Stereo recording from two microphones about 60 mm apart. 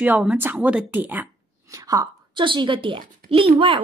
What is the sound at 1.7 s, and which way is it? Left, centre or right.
Speech, right.